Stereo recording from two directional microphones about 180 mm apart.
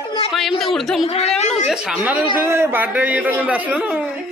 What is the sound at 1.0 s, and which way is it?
Speech, 35° left (ahead or behind).